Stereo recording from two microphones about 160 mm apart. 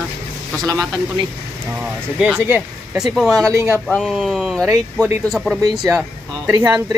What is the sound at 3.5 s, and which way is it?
Speech, 15° right (ahead or behind).